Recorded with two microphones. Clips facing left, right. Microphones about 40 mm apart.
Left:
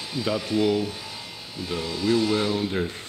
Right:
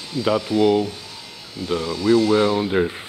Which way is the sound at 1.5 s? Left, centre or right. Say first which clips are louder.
Right 6 dB; centre.